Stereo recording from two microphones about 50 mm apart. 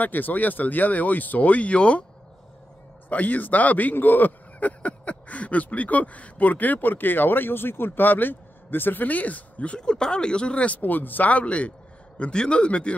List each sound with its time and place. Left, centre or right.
0.0 s speech: left
3.1 s speech: left
9.8 s speech: centre
10.8 s speech: left